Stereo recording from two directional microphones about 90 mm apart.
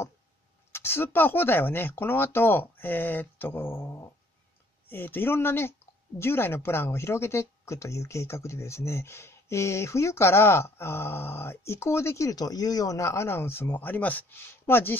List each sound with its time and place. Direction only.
0.7 s speech: 30° left (ahead or behind)